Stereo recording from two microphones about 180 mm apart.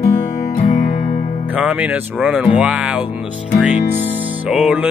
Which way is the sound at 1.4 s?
10° right (ahead or behind).